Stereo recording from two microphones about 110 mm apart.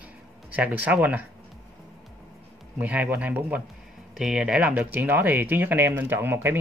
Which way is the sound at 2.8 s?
15° right (ahead or behind).